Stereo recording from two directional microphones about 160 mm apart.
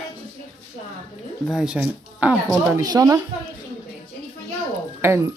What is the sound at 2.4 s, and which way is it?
Speech, 25° right (ahead or behind).